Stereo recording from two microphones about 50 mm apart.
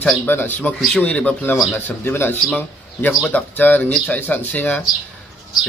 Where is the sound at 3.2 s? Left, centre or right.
Left.